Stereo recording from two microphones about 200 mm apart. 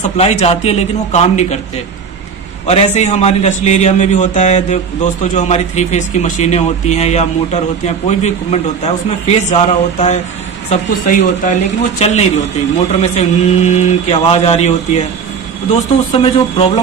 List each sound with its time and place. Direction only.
0.0 s a man's voice: 30° left (ahead or behind)
2.6 s a man's voice: 35° left (ahead or behind)